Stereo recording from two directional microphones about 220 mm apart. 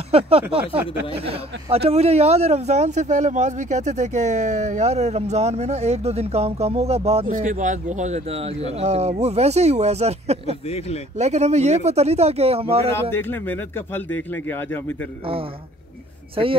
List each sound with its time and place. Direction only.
0.1 s speech: 25° right (ahead or behind)
12.9 s speech: 10° left (ahead or behind)
16.4 s speech: 25° right (ahead or behind)